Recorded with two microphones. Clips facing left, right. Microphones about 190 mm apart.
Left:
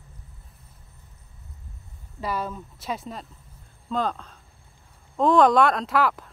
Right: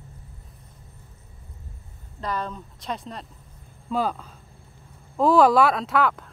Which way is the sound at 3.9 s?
10° right (ahead or behind).